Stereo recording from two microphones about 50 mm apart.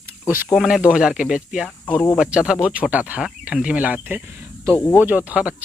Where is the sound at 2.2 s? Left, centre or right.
Centre.